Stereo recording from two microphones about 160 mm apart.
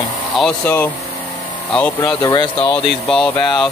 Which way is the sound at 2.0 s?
25° left (ahead or behind).